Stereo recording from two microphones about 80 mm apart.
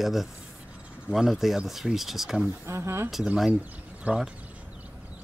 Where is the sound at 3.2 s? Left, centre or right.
Centre.